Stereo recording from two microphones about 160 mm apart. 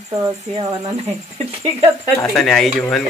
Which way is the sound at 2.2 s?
5° left (ahead or behind).